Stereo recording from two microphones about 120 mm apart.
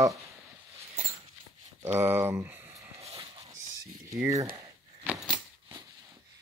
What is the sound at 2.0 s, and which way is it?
Speech, 20° right (ahead or behind).